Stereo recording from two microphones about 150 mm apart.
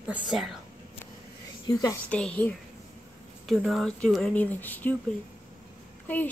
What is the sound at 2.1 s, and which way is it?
Speech, 10° left (ahead or behind).